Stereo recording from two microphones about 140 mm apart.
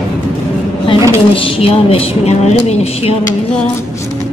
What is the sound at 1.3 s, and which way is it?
A woman's voice, 40° left (ahead or behind).